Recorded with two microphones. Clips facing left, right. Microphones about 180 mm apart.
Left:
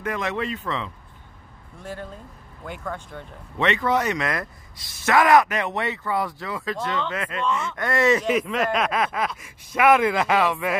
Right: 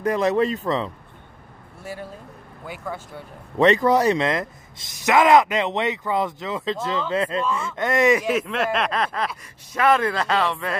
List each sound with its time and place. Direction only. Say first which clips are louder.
0.0 s speech: right 7 dB; 35° right (ahead or behind)
1.8 s speech: right 1 dB; 10° right (ahead or behind)
3.5 s speech: right 6 dB; 40° right (ahead or behind); by 8.3 s 15° right (ahead or behind)
8.3 s a man's voice: even; centre (ahead or behind)